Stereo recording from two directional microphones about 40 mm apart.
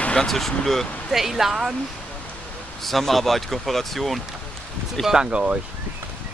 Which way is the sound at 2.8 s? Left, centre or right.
Centre.